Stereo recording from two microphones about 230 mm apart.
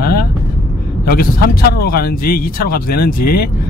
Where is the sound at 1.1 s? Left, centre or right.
Left.